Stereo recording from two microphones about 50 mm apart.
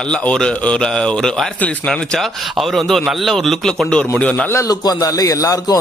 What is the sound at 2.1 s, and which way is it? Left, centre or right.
A man's voice, centre.